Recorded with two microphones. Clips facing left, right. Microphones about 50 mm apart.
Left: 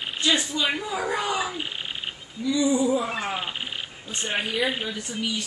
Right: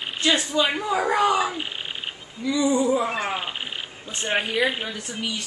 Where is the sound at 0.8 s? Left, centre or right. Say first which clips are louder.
Right 6 dB; right.